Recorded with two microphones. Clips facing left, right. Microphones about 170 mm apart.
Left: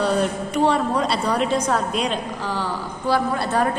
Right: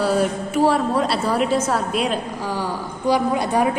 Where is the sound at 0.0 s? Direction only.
5° right (ahead or behind).